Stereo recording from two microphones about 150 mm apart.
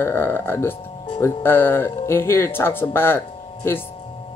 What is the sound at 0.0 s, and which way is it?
Speech, 15° left (ahead or behind).